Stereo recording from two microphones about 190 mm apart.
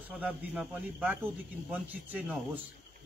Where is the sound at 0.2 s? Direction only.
5° right (ahead or behind).